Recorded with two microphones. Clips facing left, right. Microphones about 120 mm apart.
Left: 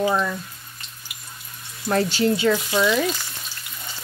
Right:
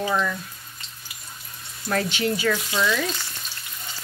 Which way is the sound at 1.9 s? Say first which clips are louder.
Left 4 dB; 30° left (ahead or behind).